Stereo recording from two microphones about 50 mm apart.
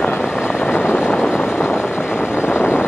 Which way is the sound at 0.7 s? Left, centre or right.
Left.